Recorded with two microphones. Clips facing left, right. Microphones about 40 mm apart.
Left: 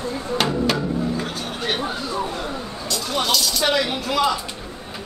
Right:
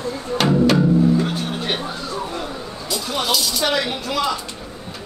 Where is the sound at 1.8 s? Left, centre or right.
Centre.